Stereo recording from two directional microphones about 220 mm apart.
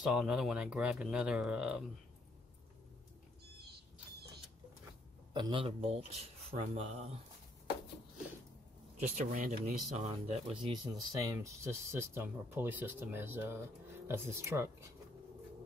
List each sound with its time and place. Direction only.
0.0 s speech: centre (ahead or behind)
5.3 s a man's voice: 20° right (ahead or behind)
9.1 s speech: 35° right (ahead or behind); by 14.9 s 10° right (ahead or behind)